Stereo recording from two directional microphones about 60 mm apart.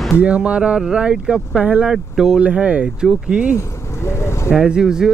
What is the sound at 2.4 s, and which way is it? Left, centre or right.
Speech, right.